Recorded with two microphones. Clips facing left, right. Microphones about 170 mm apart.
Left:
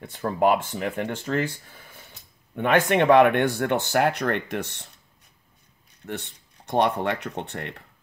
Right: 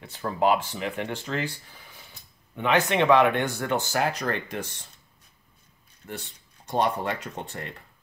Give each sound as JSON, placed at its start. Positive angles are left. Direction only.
{"t": 0.4, "sound": "speech", "side_deg": 50}
{"t": 6.0, "sound": "speech", "side_deg": 65}